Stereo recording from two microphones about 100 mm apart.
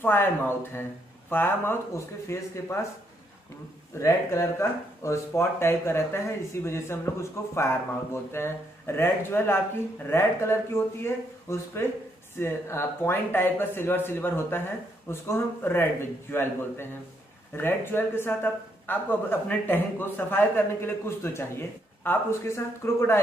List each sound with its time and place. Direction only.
0.0 s speech: 20° left (ahead or behind)
1.3 s speech: 20° left (ahead or behind)
4.0 s speech: 30° left (ahead or behind)